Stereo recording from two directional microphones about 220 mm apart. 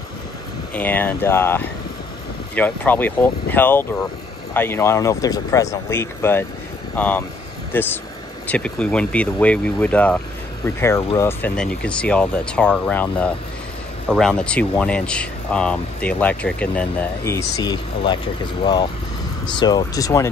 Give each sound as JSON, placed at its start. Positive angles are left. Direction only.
{"t": 0.7, "sound": "speech", "side_deg": 10}